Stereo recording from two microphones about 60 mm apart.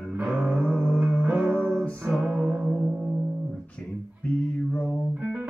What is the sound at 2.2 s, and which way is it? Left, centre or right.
Music, centre.